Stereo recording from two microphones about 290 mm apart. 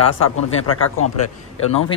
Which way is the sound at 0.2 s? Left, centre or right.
Left.